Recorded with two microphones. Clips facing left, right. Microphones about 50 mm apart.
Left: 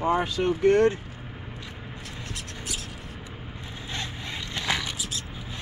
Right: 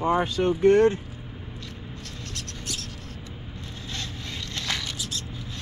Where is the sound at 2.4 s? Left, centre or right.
Centre.